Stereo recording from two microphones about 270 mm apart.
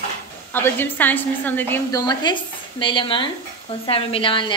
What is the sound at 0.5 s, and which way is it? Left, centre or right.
A woman's voice, centre.